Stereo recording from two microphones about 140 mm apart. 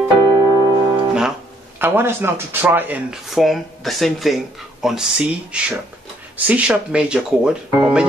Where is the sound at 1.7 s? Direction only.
15° right (ahead or behind).